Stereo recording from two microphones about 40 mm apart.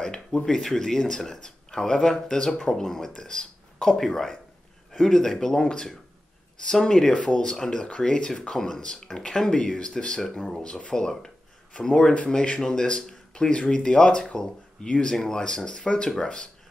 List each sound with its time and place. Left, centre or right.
0.0 s speech: centre
10.6 s speech: left